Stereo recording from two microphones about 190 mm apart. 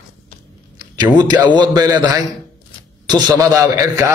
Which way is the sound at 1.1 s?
20° right (ahead or behind).